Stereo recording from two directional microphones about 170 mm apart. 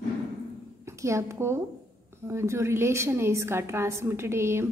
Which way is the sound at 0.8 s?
15° right (ahead or behind).